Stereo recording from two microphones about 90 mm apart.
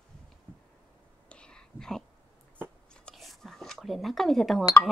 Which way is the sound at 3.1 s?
Centre (ahead or behind).